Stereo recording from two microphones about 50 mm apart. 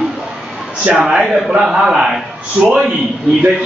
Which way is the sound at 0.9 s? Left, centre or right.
Centre.